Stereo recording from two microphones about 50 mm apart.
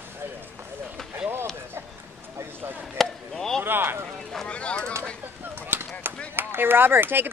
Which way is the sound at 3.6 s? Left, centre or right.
Right.